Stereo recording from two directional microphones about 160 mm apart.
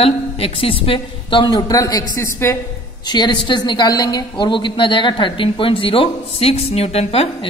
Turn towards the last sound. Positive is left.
turn(degrees=40)  # may be behind; listen again after turning